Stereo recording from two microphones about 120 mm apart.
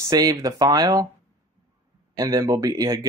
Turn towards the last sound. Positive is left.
turn(degrees=-30)  # may be behind; listen again after turning